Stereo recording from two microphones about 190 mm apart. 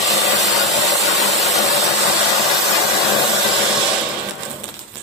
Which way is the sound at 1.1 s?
35° right (ahead or behind).